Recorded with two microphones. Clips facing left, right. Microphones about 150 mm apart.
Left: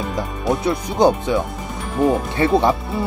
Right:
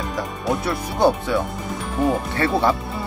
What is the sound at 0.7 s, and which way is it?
Speech, 15° left (ahead or behind).